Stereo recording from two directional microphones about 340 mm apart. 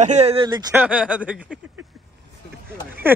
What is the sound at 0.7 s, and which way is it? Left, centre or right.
Speech, centre.